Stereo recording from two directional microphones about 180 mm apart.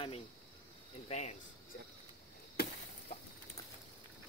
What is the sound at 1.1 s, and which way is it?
Speech, 40° left (ahead or behind).